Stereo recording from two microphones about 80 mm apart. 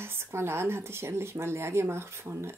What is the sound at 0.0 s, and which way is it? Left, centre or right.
Speech, right.